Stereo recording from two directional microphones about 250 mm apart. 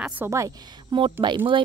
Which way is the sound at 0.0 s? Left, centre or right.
Centre.